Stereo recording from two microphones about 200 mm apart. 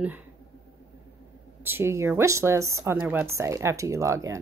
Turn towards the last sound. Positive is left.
turn(degrees=-15)  # may be behind; listen again after turning